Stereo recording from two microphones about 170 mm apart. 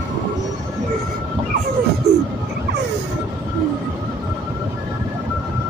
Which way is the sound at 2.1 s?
40° right (ahead or behind).